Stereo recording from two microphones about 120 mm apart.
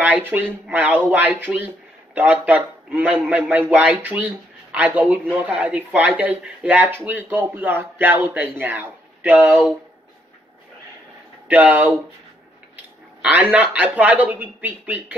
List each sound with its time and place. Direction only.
0.2 s speech: 15° right (ahead or behind)
11.4 s speech: 10° right (ahead or behind)
13.2 s speech: 10° right (ahead or behind)